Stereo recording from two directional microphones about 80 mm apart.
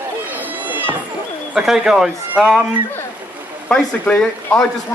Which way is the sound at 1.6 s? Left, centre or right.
Centre.